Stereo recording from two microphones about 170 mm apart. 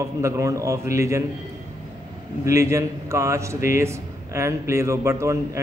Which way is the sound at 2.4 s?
15° right (ahead or behind).